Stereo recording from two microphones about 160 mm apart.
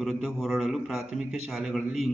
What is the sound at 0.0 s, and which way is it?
A man's voice, centre (ahead or behind).